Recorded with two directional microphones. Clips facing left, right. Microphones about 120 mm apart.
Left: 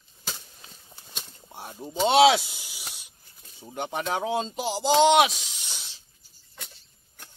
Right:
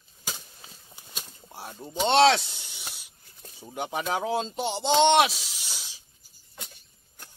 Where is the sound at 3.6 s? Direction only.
5° right (ahead or behind).